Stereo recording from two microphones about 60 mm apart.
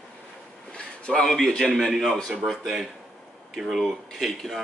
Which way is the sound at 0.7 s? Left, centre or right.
Centre.